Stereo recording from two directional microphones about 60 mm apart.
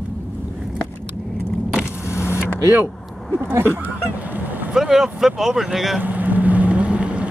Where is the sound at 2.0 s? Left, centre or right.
Left.